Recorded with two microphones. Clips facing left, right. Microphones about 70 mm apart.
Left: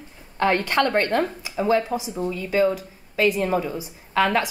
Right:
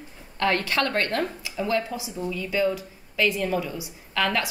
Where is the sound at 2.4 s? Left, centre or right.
Left.